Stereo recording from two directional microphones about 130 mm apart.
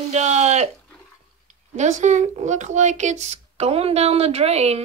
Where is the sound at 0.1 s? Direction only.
60° right (ahead or behind).